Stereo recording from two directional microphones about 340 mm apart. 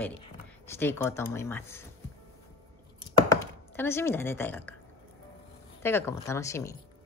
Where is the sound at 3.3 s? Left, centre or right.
Centre.